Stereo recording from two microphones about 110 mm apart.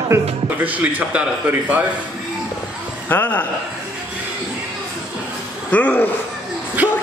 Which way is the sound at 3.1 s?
15° left (ahead or behind).